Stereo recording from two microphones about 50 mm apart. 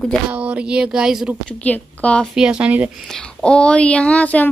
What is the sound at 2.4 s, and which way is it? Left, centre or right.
Speech, centre.